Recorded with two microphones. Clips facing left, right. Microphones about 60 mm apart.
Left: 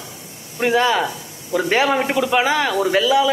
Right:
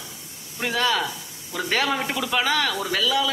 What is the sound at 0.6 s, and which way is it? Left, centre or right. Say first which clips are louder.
Speech: left 7 dB; left.